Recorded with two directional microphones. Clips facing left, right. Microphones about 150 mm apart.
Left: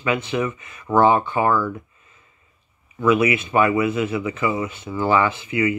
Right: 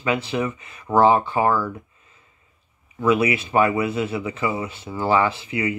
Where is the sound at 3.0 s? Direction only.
30° right (ahead or behind).